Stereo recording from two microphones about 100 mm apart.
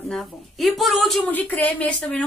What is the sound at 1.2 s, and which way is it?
A woman's voice, 15° left (ahead or behind).